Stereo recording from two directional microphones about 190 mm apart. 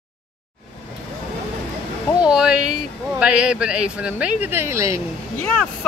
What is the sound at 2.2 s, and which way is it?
Speech, 5° right (ahead or behind).